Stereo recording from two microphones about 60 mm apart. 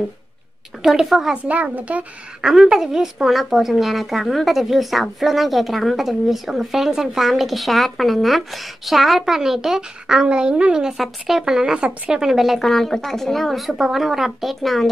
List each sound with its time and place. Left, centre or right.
0.8 s speech: centre
1.3 s a child's voice: right
2.4 s a woman's voice: centre